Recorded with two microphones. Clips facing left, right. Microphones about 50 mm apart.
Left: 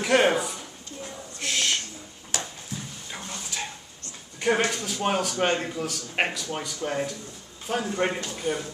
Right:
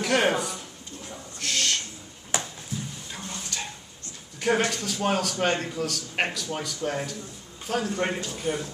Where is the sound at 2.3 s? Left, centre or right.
Right.